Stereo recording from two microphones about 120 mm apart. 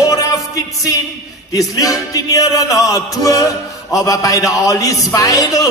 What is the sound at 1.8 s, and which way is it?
A man's voice, 30° left (ahead or behind).